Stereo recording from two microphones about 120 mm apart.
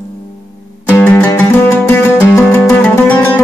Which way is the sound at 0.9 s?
15° left (ahead or behind).